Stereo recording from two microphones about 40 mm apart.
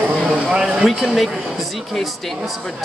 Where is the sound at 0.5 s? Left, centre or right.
Right.